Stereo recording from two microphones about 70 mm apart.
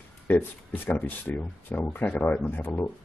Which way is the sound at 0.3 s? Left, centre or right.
Left.